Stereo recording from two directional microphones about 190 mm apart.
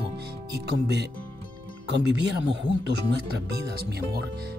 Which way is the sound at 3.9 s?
55° right (ahead or behind).